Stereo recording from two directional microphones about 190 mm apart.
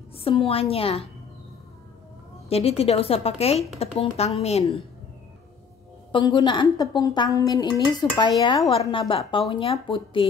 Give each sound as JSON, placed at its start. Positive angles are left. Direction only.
{"t": 0.2, "sound": "speech", "side_deg": 30}
{"t": 2.5, "sound": "speech", "side_deg": 30}
{"t": 6.1, "sound": "speech", "side_deg": 25}